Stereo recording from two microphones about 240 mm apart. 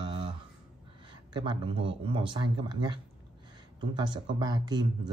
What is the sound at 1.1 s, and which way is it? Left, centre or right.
Speech, centre.